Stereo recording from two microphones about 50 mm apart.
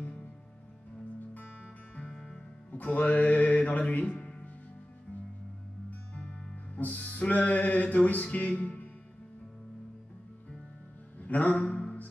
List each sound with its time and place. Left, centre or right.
0.0 s music: left
2.1 s music: centre
2.7 s music: left
6.1 s music: centre
6.7 s music: left
11.1 s a sound: left